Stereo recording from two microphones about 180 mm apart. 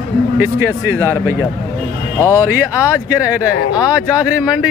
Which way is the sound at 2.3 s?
10° right (ahead or behind).